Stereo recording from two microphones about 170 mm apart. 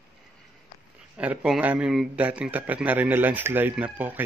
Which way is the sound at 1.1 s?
10° right (ahead or behind).